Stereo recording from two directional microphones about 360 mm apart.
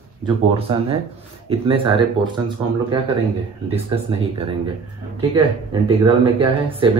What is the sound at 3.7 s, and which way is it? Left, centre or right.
Speech, centre.